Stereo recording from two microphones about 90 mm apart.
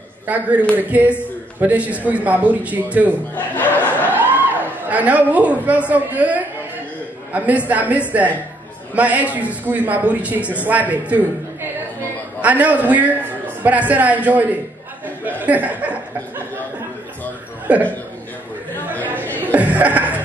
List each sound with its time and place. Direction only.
0.3 s speech: 15° right (ahead or behind)
3.3 s speech: 20° left (ahead or behind)
4.0 s a sound: 20° right (ahead or behind)
4.8 s speech: 15° right (ahead or behind)
12.4 s speech: 15° right (ahead or behind)
17.7 s speech: 15° right (ahead or behind)
19.2 s chuckle: 20° left (ahead or behind)
19.5 s chuckle: 15° right (ahead or behind)